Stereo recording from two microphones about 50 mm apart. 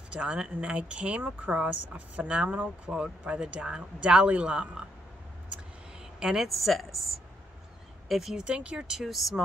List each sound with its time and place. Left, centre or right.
0.1 s speech: right
6.1 s speech: centre
8.5 s speech: right
9.0 s speech: centre